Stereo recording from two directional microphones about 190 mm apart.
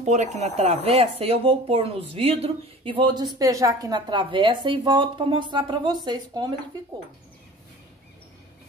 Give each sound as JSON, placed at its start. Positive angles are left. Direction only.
{"t": 0.0, "sound": "a woman's voice", "side_deg": -35}